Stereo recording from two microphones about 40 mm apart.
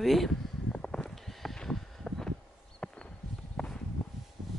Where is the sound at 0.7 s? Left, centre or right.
Left.